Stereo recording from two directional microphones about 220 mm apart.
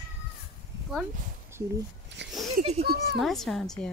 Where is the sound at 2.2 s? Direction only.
50° right (ahead or behind).